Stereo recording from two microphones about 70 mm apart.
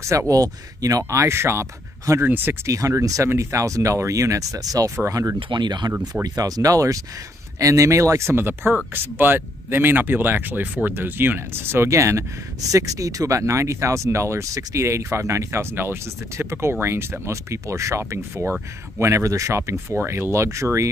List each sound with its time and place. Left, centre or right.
0.3 s speech: right
2.2 s speech: right
2.6 s speech: right
5.1 s speech: right
5.5 s speech: right
6.2 s speech: right